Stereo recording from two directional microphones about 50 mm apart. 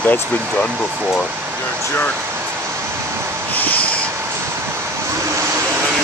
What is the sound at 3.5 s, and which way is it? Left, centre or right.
Vehicle, left.